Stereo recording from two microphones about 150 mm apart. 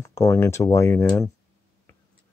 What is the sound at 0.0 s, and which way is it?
Speech, 20° left (ahead or behind).